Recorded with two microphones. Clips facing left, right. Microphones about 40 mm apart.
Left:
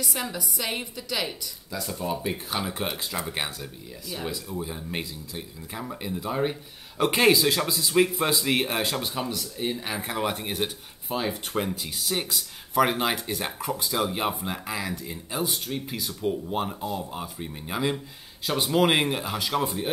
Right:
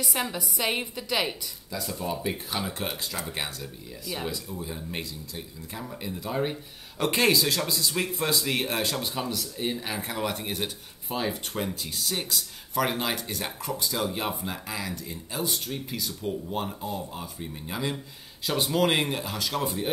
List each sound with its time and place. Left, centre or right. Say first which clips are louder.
0.0 s a woman's voice: right 1 dB; centre
1.7 s speech: left 2 dB; centre
4.6 s speech: left 3 dB; centre
17.9 s speech: left 3 dB; centre
19.6 s speech: left 1 dB; centre